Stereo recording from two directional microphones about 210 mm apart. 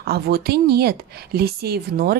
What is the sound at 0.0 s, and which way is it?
Speech, 50° right (ahead or behind).